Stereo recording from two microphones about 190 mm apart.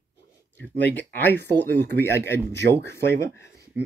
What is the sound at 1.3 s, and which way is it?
Speech, 65° right (ahead or behind).